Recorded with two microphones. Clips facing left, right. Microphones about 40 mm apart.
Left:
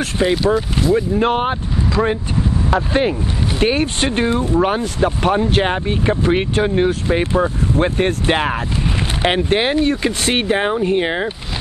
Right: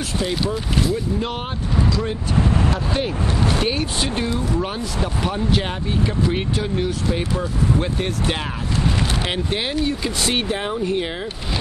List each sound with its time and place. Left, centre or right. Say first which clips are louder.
0.2 s speech: left 9 dB; left